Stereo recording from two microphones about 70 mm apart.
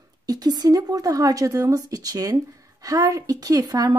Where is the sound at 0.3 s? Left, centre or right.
Right.